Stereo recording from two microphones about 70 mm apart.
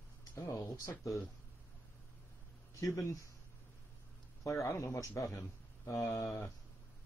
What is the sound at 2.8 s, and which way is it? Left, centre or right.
Speech, left.